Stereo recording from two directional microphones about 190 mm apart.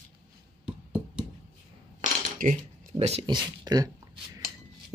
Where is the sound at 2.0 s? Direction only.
40° right (ahead or behind).